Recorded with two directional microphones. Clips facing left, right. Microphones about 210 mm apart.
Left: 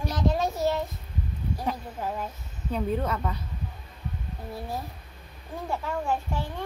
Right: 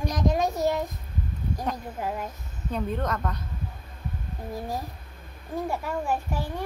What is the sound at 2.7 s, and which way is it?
Speech, 10° left (ahead or behind).